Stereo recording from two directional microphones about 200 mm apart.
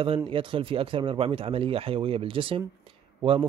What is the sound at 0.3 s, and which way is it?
Speech, 25° right (ahead or behind).